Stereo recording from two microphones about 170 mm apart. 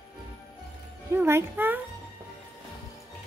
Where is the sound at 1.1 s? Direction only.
15° right (ahead or behind).